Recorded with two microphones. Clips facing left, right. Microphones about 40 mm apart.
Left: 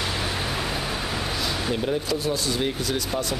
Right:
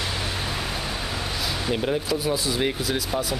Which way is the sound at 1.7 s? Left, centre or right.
Centre.